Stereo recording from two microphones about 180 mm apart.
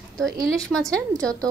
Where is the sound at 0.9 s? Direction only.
20° right (ahead or behind).